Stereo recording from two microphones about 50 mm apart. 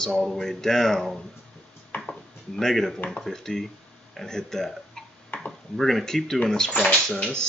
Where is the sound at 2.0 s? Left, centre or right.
Centre.